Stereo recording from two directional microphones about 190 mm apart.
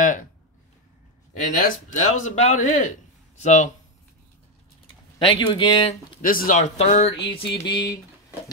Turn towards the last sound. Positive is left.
turn(degrees=20)  # may be behind; listen again after turning